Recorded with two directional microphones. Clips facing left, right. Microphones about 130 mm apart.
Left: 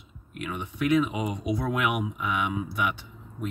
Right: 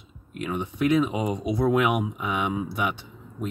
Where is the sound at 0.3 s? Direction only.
30° right (ahead or behind).